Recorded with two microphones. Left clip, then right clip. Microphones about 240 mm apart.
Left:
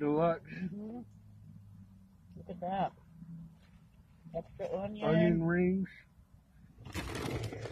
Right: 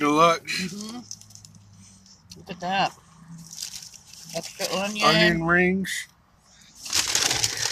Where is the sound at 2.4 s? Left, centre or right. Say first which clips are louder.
Right 10 dB; right.